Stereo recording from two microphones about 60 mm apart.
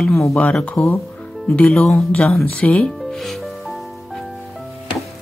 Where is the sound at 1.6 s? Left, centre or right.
Centre.